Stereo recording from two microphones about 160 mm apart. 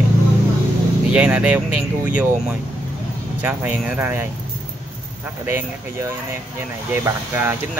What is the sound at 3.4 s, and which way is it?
Speech, 10° right (ahead or behind).